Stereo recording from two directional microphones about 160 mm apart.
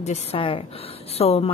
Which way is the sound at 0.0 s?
40° left (ahead or behind).